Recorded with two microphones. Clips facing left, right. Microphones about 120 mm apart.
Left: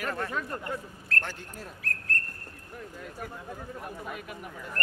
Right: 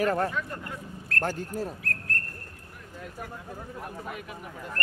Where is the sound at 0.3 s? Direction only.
40° left (ahead or behind).